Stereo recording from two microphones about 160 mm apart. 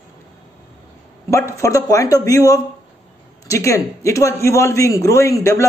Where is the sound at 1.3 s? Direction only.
20° left (ahead or behind).